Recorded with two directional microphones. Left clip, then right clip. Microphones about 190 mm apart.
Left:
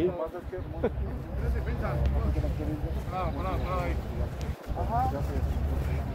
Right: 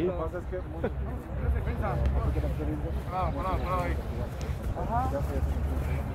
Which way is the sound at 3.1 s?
35° left (ahead or behind).